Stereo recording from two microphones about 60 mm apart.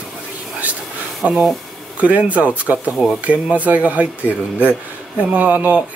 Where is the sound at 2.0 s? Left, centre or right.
Right.